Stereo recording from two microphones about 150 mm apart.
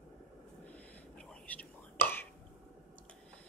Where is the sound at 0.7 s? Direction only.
10° left (ahead or behind).